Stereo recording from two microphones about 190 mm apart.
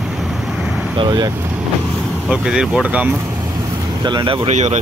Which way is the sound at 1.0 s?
20° right (ahead or behind).